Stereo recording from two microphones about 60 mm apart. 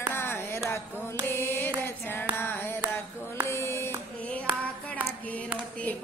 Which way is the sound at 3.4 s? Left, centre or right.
Left.